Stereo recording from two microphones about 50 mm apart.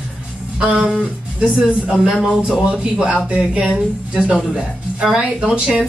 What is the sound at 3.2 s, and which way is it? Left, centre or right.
A woman's voice, right.